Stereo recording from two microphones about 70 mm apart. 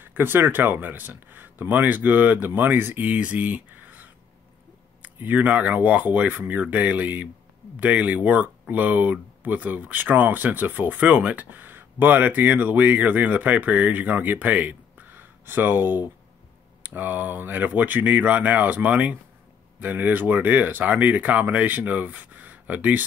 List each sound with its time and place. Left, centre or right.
0.0 s speech: right